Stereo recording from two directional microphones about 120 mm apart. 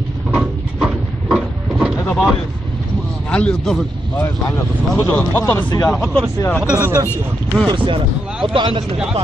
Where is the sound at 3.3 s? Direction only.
5° left (ahead or behind).